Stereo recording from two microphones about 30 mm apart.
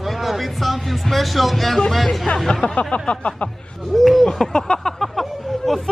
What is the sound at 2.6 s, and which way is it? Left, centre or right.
Speech, left.